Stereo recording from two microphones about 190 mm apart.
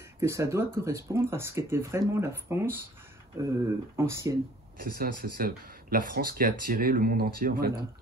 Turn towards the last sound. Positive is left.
turn(degrees=-50)  # may be behind; listen again after turning